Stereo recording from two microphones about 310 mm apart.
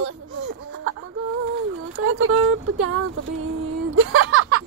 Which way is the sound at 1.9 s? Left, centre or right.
Right.